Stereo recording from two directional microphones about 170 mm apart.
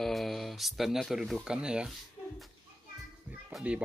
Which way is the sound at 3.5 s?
Centre (ahead or behind).